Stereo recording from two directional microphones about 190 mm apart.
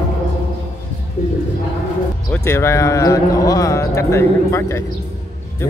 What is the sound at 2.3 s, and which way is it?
Speech, 15° left (ahead or behind).